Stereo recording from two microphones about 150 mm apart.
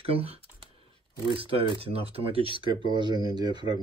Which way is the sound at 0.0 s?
40° right (ahead or behind).